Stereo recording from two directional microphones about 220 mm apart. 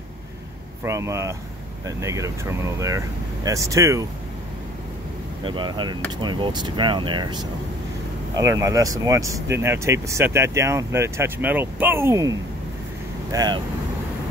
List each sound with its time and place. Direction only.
0.8 s speech: 15° right (ahead or behind)
3.4 s speech: 15° right (ahead or behind)
5.4 s speech: 20° right (ahead or behind)
8.4 s speech: 15° right (ahead or behind)